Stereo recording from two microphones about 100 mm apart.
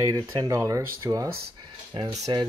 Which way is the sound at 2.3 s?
55° right (ahead or behind).